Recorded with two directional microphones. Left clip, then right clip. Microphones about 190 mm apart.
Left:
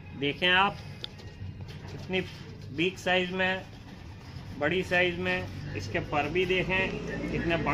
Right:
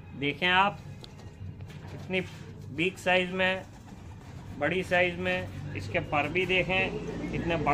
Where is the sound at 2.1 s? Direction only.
15° right (ahead or behind).